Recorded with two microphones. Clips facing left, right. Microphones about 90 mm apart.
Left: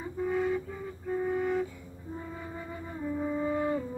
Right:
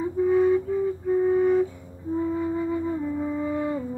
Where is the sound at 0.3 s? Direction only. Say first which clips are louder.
Right 10 dB; 20° right (ahead or behind).